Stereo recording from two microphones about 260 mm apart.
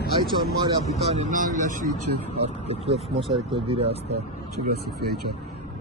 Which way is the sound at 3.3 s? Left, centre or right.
Right.